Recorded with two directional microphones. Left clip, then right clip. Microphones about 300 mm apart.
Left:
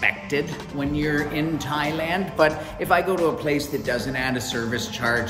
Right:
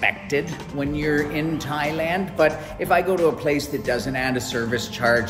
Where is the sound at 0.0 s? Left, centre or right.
Centre.